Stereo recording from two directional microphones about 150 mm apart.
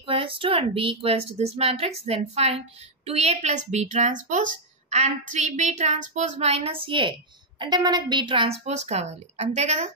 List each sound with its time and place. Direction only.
0.0 s a woman's voice: 35° right (ahead or behind)